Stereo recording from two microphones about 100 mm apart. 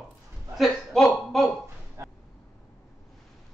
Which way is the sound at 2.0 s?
25° right (ahead or behind).